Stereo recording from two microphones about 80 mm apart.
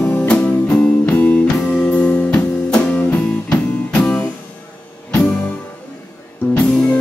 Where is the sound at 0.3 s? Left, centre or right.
Centre.